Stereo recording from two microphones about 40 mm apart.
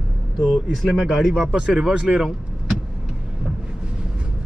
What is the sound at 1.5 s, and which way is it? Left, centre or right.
Speech, right.